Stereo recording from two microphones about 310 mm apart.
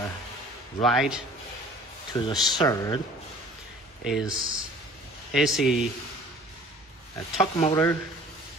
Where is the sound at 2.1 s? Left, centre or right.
Centre.